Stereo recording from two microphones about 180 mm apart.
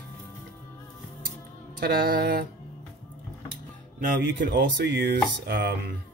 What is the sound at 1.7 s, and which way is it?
Music, 55° right (ahead or behind).